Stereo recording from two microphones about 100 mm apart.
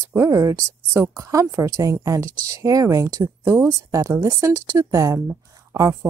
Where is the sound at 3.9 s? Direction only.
35° right (ahead or behind).